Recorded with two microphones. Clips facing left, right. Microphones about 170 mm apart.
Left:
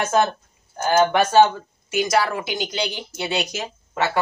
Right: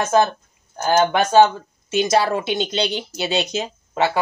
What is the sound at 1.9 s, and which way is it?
Speech, 25° right (ahead or behind).